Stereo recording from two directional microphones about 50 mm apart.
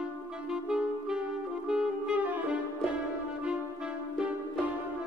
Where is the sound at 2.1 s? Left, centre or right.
Right.